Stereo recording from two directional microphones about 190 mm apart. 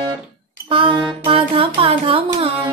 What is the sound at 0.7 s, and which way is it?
Music, 25° right (ahead or behind).